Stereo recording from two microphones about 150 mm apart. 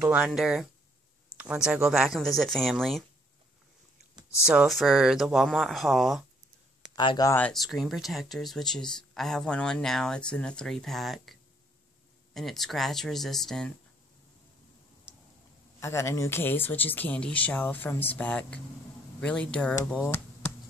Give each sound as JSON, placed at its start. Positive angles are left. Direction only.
{"t": 0.0, "sound": "speech", "side_deg": -5}
{"t": 4.5, "sound": "speech", "side_deg": -5}
{"t": 7.0, "sound": "speech", "side_deg": 25}
{"t": 7.6, "sound": "speech", "side_deg": 0}
{"t": 12.4, "sound": "speech", "side_deg": 0}
{"t": 15.8, "sound": "speech", "side_deg": 20}